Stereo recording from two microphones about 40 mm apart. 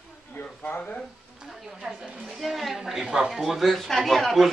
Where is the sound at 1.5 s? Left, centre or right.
Centre.